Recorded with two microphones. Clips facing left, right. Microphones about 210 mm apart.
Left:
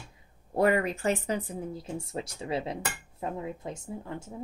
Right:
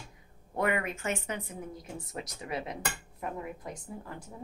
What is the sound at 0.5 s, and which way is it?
A woman's voice, 35° left (ahead or behind).